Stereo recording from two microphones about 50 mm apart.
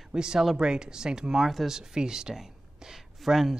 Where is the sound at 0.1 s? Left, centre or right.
Centre.